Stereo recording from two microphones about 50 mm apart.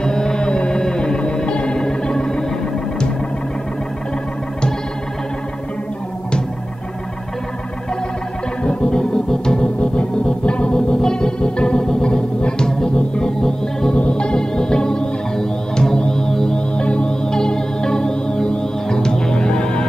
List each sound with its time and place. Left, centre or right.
0.0 s music: centre
8.6 s organ: centre
9.8 s music: centre
13.9 s music: left